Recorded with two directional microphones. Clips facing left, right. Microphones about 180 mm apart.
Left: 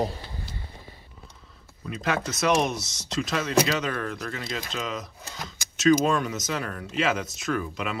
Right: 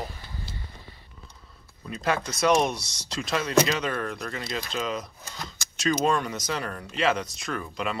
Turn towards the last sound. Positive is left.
turn(degrees=0)  # may be behind; listen again after turning